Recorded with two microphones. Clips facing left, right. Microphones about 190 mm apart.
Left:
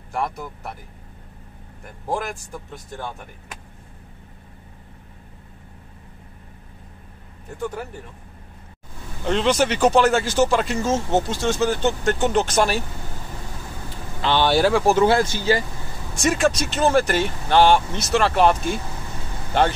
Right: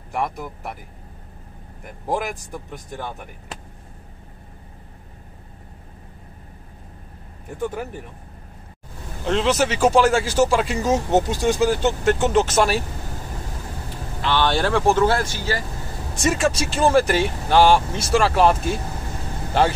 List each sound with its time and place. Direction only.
0.1 s speech: 15° right (ahead or behind)
2.0 s speech: 15° right (ahead or behind)
9.2 s speech: 5° right (ahead or behind)
14.2 s speech: 10° left (ahead or behind)
15.0 s speech: 20° left (ahead or behind)
16.2 s speech: 5° right (ahead or behind)